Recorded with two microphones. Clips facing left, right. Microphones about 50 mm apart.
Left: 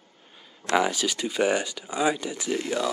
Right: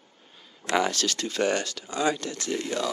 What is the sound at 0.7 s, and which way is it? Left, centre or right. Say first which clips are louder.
Speech: left 1 dB; centre.